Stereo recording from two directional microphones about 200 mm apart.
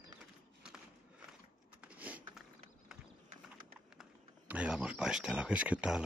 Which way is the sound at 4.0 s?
5° right (ahead or behind).